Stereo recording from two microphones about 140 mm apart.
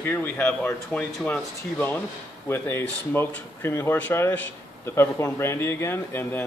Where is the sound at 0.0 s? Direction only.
15° left (ahead or behind).